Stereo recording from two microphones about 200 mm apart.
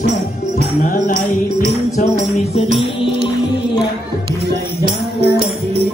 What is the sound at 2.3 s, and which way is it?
Music, 30° left (ahead or behind).